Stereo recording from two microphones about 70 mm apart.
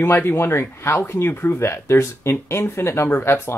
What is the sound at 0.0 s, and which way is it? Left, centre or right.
Speech, left.